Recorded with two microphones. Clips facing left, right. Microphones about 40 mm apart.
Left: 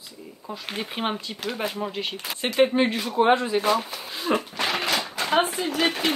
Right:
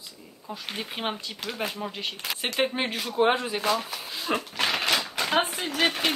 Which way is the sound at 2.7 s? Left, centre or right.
Centre.